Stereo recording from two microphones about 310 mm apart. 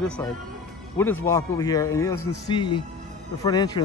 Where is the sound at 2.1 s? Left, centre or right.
Left.